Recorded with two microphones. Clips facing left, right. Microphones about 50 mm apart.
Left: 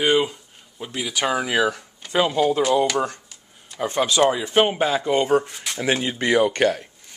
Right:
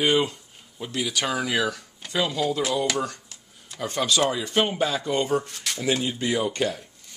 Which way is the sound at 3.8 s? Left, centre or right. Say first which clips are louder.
Left 5 dB; left.